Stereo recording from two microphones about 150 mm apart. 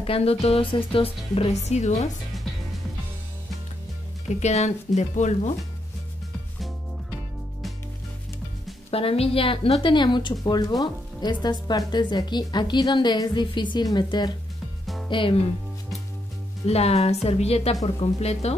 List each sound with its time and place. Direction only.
0.0 s speech: 40° left (ahead or behind)
4.4 s speech: 50° left (ahead or behind)
8.9 s a woman's voice: 40° left (ahead or behind)
16.6 s speech: 45° left (ahead or behind)